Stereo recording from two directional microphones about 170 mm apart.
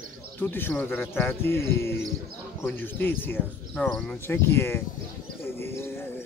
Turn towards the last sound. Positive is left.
turn(degrees=15)  # may be behind; listen again after turning